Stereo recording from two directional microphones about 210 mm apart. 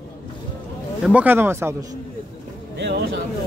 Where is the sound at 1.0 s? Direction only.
5° right (ahead or behind).